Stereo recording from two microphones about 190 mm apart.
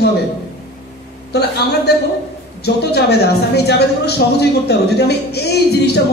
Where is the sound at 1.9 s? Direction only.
60° left (ahead or behind).